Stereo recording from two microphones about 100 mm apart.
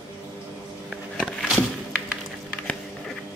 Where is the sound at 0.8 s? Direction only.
5° right (ahead or behind).